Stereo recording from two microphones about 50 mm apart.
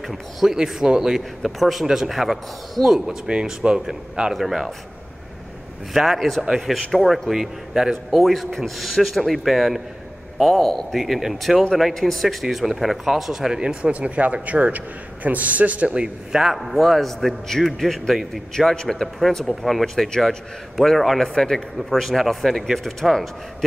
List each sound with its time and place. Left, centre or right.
0.1 s a man's voice: centre
0.6 s speech: centre
1.4 s a man's voice: centre
3.3 s speech: centre
4.3 s a man's voice: centre
5.9 s a man's voice: centre
11.0 s a man's voice: centre
11.9 s a man's voice: centre
13.9 s a man's voice: right
15.9 s a man's voice: centre